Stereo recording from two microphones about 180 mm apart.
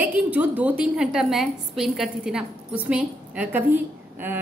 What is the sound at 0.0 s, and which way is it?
A woman's voice, 10° right (ahead or behind).